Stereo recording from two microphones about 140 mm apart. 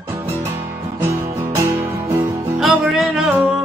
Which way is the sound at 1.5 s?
20° right (ahead or behind).